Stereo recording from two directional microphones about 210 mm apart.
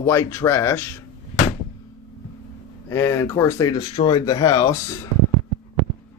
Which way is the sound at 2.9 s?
15° left (ahead or behind).